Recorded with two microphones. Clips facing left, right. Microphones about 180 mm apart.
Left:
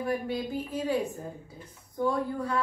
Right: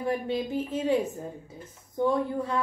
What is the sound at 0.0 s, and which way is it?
A woman's voice, 25° right (ahead or behind).